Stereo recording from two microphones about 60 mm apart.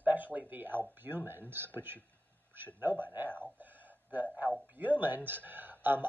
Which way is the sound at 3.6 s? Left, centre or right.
Right.